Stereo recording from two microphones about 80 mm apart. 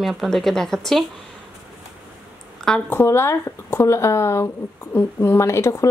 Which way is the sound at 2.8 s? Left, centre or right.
Left.